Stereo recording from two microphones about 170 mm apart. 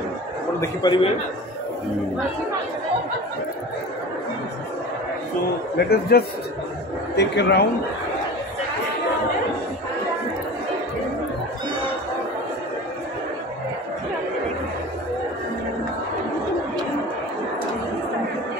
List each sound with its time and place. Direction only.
0.6 s a man's voice: 25° left (ahead or behind)
5.9 s a man's voice: 65° left (ahead or behind)
7.2 s speech: 85° left